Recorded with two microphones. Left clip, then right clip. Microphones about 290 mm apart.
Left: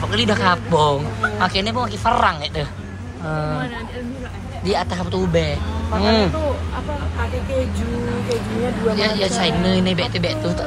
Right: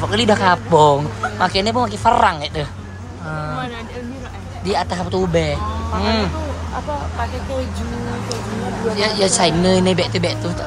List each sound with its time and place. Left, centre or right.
0.1 s speech: centre
3.3 s a man's voice: centre
4.6 s speech: centre
8.9 s speech: centre